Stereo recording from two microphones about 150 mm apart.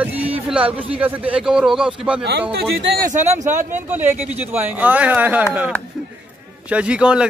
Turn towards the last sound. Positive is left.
turn(degrees=-5)  # may be behind; listen again after turning